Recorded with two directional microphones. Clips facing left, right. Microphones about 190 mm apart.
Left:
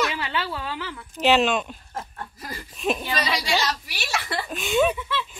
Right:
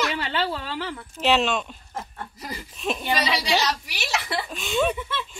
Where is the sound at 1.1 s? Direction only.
Centre (ahead or behind).